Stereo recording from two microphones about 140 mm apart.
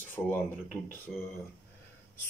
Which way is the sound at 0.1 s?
15° left (ahead or behind).